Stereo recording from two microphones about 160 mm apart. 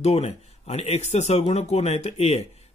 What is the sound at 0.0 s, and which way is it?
Speech, 40° left (ahead or behind).